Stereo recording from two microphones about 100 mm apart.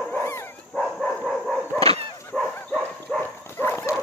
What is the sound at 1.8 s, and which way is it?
Dog, 75° right (ahead or behind).